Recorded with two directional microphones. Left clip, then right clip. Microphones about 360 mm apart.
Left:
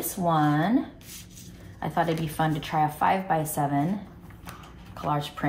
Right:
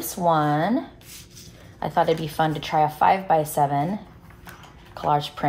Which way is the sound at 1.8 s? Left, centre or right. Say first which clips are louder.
Right 5 dB; right.